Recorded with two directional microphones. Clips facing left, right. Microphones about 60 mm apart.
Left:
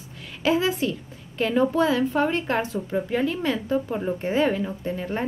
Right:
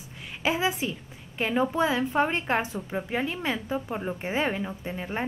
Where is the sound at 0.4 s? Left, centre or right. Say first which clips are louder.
Left 4 dB; centre.